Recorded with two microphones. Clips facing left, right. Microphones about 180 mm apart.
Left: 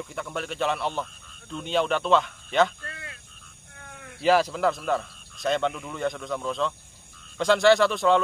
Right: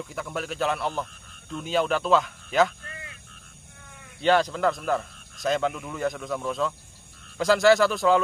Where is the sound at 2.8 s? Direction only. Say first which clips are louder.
Left 2 dB; 70° left (ahead or behind).